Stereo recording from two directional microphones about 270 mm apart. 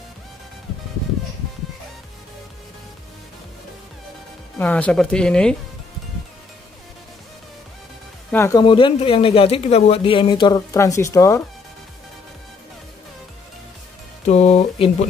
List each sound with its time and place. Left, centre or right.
4.6 s speech: centre
8.3 s speech: centre
14.2 s a sound: left